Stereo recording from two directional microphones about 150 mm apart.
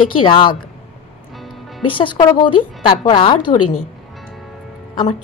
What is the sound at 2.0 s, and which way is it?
A woman's voice, 30° left (ahead or behind).